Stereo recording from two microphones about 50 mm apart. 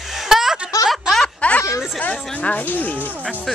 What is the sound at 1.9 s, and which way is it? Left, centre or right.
Speech, left.